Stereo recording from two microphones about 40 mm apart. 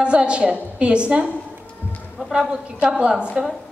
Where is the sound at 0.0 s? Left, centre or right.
Right.